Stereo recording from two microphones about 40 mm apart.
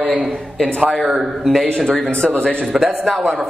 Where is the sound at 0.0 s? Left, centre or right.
Right.